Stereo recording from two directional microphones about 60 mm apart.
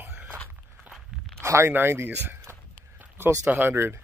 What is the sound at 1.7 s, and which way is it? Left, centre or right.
Speech, right.